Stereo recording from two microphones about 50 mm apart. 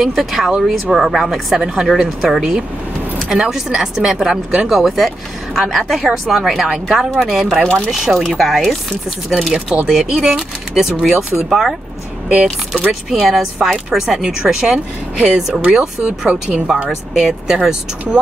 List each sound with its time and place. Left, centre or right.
0.0 s speech: centre
7.6 s speech: left
7.9 s speech: centre
13.1 s speech: centre
16.1 s speech: right